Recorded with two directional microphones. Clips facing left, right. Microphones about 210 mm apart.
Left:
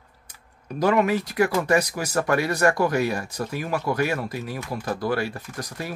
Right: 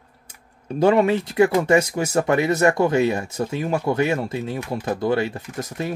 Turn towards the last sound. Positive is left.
turn(degrees=-20)  # may be behind; listen again after turning